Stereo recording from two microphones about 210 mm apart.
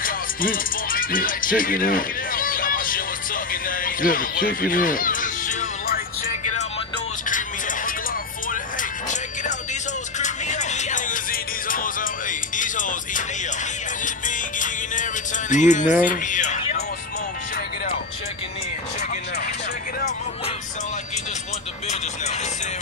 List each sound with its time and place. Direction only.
0.0 s music: 40° left (ahead or behind)
7.2 s music: 40° left (ahead or behind)
9.1 s music: 35° left (ahead or behind)
16.0 s a sound: 40° left (ahead or behind)